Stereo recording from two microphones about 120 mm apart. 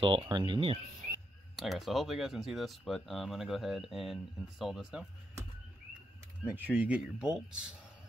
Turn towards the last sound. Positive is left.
turn(degrees=-5)  # may be behind; listen again after turning